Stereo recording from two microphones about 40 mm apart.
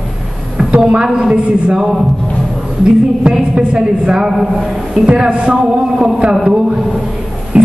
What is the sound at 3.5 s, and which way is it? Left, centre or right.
Speech, right.